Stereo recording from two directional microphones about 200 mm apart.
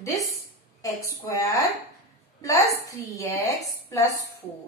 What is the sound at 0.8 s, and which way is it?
Speech, 15° left (ahead or behind).